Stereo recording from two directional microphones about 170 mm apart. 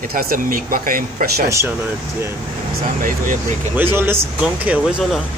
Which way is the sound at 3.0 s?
50° right (ahead or behind).